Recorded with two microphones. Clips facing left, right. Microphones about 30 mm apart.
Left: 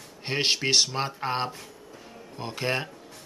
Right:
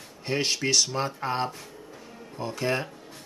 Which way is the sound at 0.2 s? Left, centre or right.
Left.